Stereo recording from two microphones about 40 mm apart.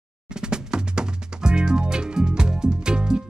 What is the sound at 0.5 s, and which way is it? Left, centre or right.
Music, centre.